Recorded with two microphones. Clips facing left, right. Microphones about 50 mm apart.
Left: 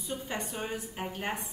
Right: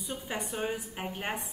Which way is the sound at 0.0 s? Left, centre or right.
Centre.